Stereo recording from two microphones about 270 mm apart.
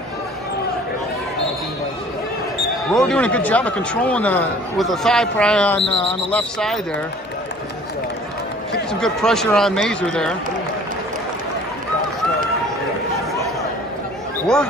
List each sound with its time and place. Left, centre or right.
2.9 s speech: centre
5.8 s speech: centre
6.3 s speech: centre
9.0 s speech: centre